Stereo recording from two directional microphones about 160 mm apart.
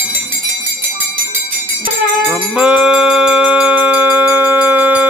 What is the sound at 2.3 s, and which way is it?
Music, 5° right (ahead or behind).